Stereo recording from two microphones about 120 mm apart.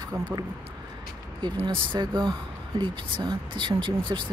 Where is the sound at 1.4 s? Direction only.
40° right (ahead or behind).